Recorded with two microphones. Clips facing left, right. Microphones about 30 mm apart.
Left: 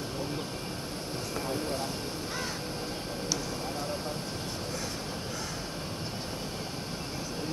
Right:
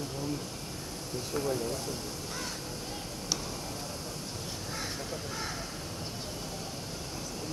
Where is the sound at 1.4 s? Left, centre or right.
Left.